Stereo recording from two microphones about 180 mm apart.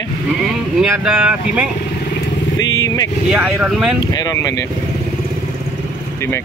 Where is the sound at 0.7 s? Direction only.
5° right (ahead or behind).